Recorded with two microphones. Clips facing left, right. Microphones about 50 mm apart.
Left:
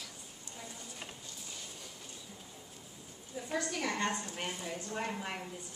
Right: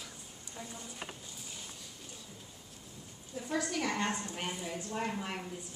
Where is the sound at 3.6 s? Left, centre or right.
Centre.